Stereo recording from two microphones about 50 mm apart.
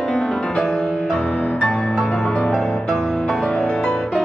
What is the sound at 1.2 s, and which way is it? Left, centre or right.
Music, left.